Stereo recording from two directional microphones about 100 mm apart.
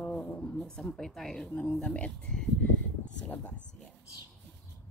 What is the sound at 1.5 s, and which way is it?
A woman's voice, 20° left (ahead or behind).